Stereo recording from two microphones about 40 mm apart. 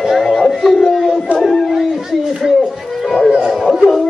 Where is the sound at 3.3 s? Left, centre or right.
Right.